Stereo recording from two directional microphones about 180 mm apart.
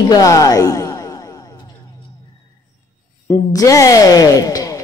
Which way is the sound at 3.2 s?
20° left (ahead or behind).